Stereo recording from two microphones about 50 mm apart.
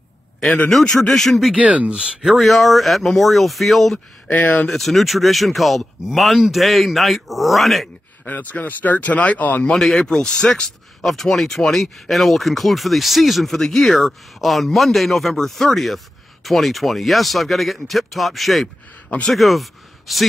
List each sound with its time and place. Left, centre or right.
0.7 s speech: centre
1.5 s speech: right
2.2 s speech: centre
4.3 s speech: left
4.6 s speech: centre
8.3 s speech: left
9.7 s speech: centre